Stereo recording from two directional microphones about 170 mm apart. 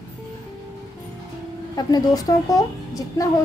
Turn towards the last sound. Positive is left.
turn(degrees=20)  # may be behind; listen again after turning